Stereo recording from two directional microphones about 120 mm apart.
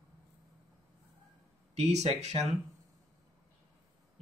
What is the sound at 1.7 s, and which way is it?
Speech, 65° right (ahead or behind).